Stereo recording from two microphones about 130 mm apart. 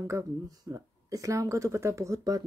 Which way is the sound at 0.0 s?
25° right (ahead or behind).